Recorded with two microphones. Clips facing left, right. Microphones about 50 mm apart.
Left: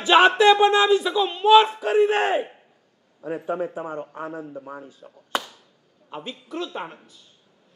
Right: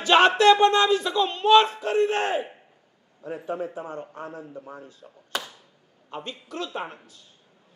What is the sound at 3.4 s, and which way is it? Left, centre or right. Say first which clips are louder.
A man's voice: left 3 dB; centre.